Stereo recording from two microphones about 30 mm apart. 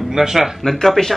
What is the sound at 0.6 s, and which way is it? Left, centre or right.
Speech, centre.